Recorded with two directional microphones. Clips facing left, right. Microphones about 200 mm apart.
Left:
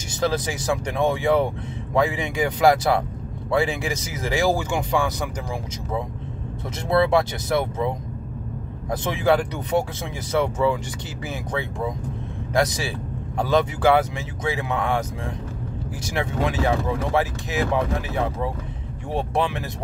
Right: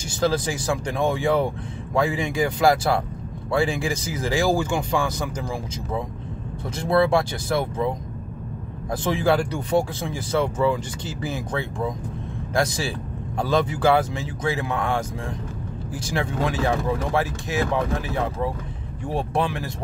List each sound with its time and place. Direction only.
0.1 s speech: 20° left (ahead or behind)
6.8 s speech: 20° left (ahead or behind)
8.9 s speech: 15° left (ahead or behind)
16.1 s speech: 20° left (ahead or behind)
19.0 s speech: 20° left (ahead or behind)